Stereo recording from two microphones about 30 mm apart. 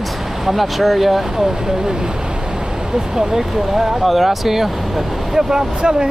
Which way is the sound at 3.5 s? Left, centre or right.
Centre.